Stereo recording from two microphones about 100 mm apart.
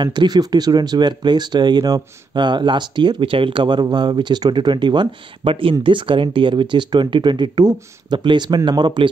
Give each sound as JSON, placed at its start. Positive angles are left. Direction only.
{"t": 0.0, "sound": "speech", "side_deg": -50}